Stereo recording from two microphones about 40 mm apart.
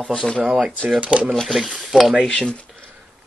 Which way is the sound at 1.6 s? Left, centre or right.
Centre.